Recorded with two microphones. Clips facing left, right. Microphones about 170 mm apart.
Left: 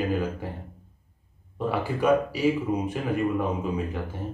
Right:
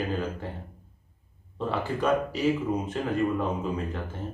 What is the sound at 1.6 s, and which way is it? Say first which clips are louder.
Speech: left 2 dB; 10° left (ahead or behind).